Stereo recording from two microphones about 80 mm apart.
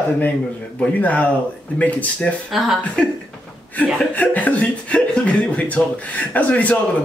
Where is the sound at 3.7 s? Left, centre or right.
Centre.